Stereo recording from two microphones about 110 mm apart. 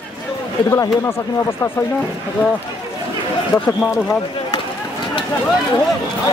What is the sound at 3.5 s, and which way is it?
Speech, 35° left (ahead or behind).